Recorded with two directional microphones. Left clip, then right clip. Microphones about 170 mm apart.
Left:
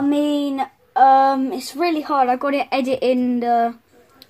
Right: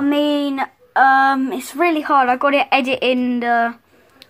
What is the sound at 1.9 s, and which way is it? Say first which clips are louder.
Speech: right 2 dB; 55° right (ahead or behind).